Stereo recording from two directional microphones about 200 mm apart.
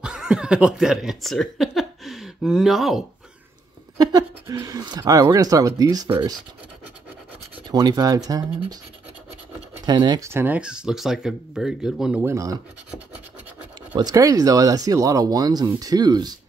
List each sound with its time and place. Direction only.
0.0 s speech: 5° right (ahead or behind)
4.0 s speech: 20° right (ahead or behind)
7.7 s speech: 20° right (ahead or behind)
9.8 s speech: 20° right (ahead or behind)
13.9 s speech: 20° right (ahead or behind)